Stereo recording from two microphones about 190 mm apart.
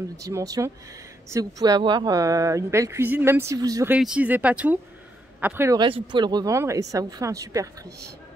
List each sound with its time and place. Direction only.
0.2 s speech: 15° right (ahead or behind)
5.8 s speech: 25° right (ahead or behind)